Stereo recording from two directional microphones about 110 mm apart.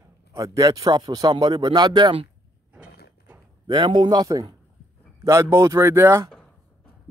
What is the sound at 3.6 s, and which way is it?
A man's voice, 45° right (ahead or behind).